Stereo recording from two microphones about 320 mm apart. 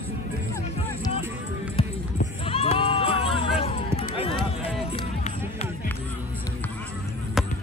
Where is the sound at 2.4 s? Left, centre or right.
Centre.